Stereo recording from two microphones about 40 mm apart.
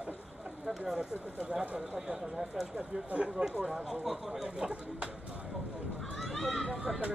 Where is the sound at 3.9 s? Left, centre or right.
Centre.